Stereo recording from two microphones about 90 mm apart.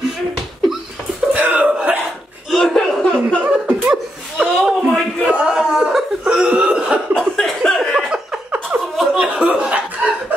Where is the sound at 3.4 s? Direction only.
15° right (ahead or behind).